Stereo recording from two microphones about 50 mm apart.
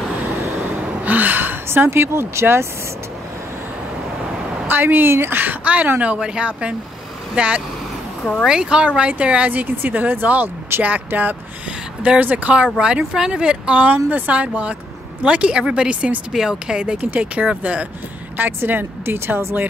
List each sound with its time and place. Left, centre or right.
0.6 s a sound: right
1.9 s speech: right
4.6 s speech: right
5.4 s a woman's voice: right
6.1 s speech: centre
9.5 s a woman's voice: right
12.7 s speech: centre
13.8 s speech: right
16.3 s speech: centre
17.0 s speech: right
18.4 s speech: right